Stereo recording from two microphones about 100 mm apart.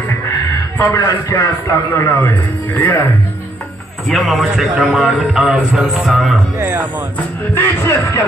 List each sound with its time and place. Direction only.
0.7 s a man's voice: 30° left (ahead or behind)
4.1 s a man's voice: centre (ahead or behind)
6.6 s speech: 20° right (ahead or behind)
7.2 s a man's voice: 25° left (ahead or behind)